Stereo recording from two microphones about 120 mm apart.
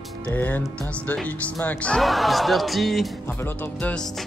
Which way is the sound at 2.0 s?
Centre (ahead or behind).